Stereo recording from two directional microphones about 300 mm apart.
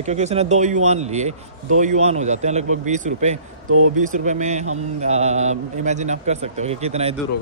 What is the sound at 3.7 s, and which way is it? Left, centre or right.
Speech, right.